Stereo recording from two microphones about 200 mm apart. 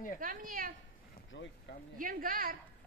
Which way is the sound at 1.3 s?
65° left (ahead or behind).